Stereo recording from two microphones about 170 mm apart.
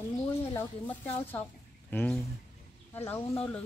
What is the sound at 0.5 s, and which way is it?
Speech, 10° left (ahead or behind).